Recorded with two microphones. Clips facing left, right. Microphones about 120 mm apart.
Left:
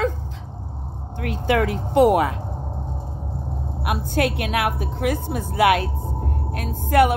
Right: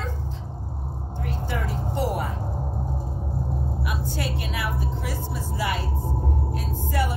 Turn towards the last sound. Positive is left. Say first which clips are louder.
# left 10 dB
turn(degrees=60)  # may be behind; listen again after turning